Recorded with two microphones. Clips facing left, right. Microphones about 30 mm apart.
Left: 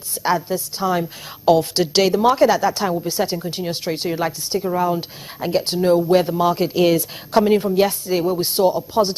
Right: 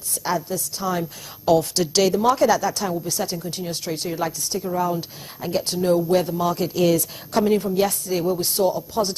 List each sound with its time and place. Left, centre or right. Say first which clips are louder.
0.1 s a woman's voice: left 5 dB; left